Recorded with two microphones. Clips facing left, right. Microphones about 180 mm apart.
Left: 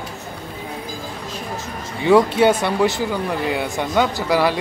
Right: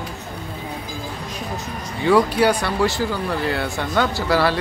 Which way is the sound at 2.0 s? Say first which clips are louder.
Left 2 dB; 25° left (ahead or behind).